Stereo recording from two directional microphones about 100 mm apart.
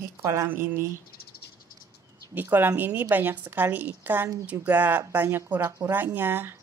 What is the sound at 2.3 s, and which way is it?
A woman's voice, 20° right (ahead or behind).